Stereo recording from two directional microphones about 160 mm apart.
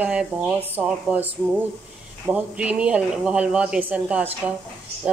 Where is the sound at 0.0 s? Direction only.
10° right (ahead or behind).